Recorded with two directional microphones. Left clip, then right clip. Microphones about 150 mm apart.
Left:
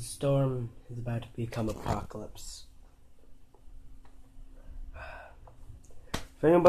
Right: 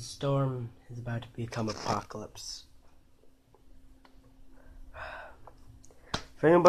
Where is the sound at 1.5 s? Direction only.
15° right (ahead or behind).